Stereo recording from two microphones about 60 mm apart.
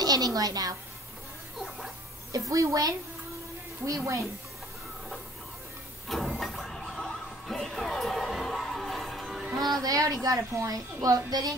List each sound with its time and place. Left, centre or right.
0.0 s a sound: right
2.3 s a woman's voice: right
4.0 s a woman's voice: right
6.0 s music: centre
9.8 s a woman's voice: right